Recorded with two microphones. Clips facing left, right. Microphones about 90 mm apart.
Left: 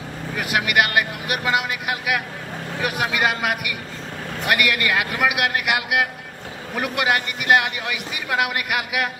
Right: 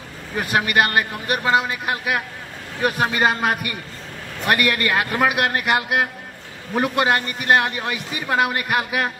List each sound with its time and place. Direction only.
0.4 s a man's voice: 35° right (ahead or behind)